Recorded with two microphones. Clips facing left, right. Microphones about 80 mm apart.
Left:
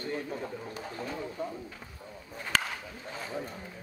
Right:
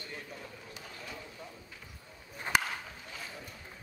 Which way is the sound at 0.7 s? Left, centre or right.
Left.